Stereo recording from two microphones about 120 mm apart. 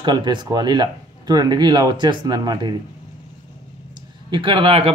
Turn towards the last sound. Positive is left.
turn(degrees=-50)  # may be behind; listen again after turning